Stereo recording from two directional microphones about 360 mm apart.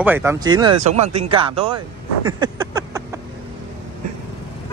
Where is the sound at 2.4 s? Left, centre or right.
Centre.